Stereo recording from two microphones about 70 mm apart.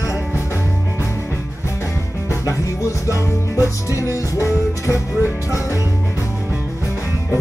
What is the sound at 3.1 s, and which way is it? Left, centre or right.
Music, left.